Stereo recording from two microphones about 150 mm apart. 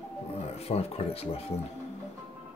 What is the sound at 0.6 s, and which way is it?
Speech, 40° left (ahead or behind).